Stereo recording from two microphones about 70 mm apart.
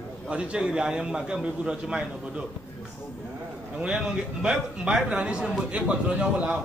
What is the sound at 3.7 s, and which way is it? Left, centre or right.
A man's voice, centre.